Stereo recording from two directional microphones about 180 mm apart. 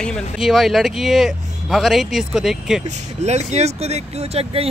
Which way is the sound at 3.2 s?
35° right (ahead or behind).